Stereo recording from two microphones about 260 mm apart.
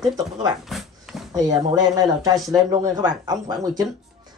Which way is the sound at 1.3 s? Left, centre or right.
Centre.